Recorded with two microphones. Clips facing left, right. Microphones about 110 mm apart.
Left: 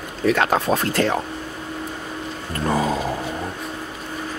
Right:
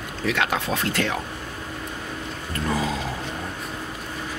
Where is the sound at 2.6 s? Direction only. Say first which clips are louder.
Left 5 dB; 45° left (ahead or behind).